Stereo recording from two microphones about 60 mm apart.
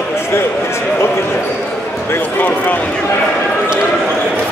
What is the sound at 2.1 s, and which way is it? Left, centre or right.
Speech, left.